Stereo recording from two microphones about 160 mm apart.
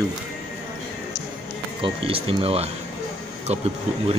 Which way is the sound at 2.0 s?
35° right (ahead or behind).